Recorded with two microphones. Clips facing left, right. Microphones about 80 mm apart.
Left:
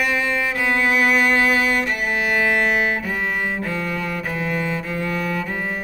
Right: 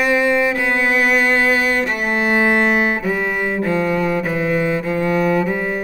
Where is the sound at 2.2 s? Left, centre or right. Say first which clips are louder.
Right 4 dB; right.